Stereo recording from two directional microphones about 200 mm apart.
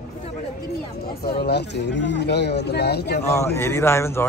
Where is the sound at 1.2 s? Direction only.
50° left (ahead or behind).